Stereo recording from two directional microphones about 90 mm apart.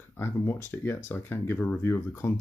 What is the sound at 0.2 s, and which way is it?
Speech, 25° left (ahead or behind).